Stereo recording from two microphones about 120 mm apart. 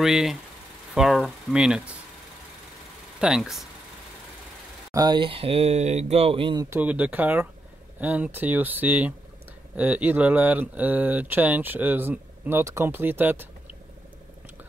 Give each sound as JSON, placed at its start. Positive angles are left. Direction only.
{"t": 0.0, "sound": "speech", "side_deg": -5}
{"t": 3.2, "sound": "speech", "side_deg": -5}
{"t": 4.9, "sound": "speech", "side_deg": -35}
{"t": 6.8, "sound": "speech", "side_deg": -10}